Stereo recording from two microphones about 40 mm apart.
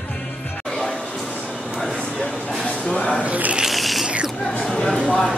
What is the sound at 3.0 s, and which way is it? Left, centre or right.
Shuffling cards, left.